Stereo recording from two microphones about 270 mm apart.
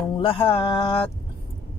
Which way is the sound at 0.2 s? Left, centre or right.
Centre.